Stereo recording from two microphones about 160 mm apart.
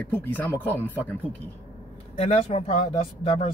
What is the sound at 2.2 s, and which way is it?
Speech, 40° left (ahead or behind).